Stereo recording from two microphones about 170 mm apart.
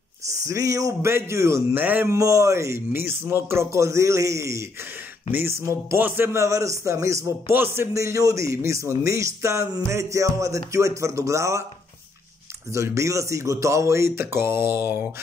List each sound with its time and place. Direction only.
0.3 s speech: 20° right (ahead or behind)
12.7 s speech: 15° right (ahead or behind)